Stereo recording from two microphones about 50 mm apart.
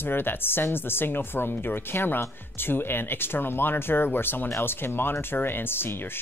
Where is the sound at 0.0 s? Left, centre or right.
Left.